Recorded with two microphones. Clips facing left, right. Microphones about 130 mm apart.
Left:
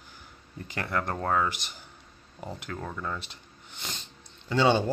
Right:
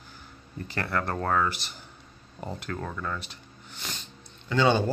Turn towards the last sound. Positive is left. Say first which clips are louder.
# even
turn(degrees=25)  # may be behind; listen again after turning